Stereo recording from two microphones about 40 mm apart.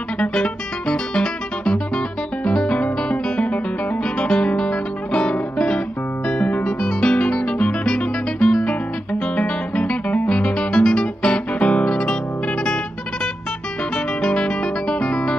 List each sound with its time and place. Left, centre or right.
0.2 s music: left
11.6 s guitar: left
13.9 s guitar: left